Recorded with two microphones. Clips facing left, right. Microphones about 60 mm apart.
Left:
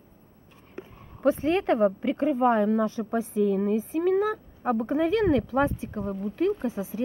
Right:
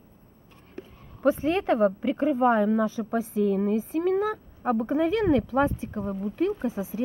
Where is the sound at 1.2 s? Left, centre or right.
Centre.